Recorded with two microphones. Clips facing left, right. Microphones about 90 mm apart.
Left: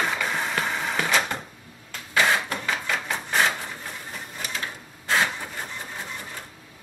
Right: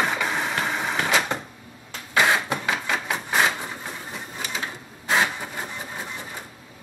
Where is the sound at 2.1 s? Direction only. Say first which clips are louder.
Right 2 dB; 15° right (ahead or behind).